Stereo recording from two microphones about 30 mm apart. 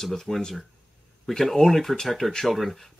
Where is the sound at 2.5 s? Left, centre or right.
Centre.